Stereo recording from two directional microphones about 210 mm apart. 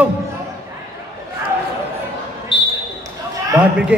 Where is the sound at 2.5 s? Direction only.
25° left (ahead or behind).